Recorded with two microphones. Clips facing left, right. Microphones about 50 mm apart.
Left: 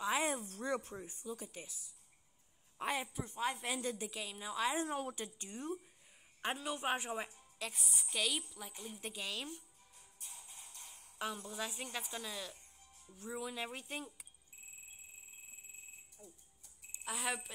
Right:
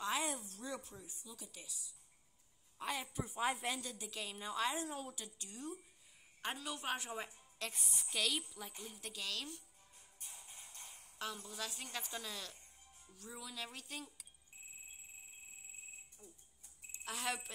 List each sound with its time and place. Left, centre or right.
0.2 s a woman's voice: left
3.1 s a woman's voice: centre
3.8 s speech: left
4.1 s a woman's voice: centre
4.8 s a woman's voice: left
5.2 s speech: left
7.5 s a woman's voice: centre
8.8 s speech: centre
10.1 s music: right
11.1 s a woman's voice: centre
13.1 s speech: left
16.2 s a woman's voice: centre